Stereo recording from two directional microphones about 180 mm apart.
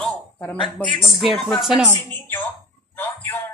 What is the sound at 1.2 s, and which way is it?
Speech, centre (ahead or behind).